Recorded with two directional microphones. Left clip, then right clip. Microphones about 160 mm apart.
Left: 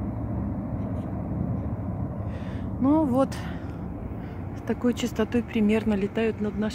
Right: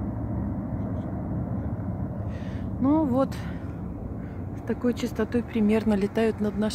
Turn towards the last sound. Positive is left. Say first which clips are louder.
# right 2 dB
turn(degrees=-15)  # may be behind; listen again after turning